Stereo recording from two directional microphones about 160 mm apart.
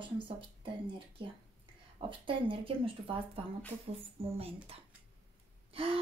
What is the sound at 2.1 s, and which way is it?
Speech, 30° right (ahead or behind).